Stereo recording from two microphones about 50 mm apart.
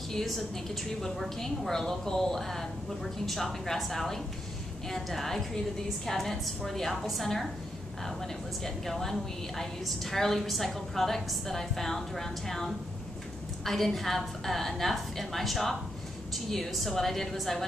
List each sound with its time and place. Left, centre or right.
0.1 s a woman's voice: centre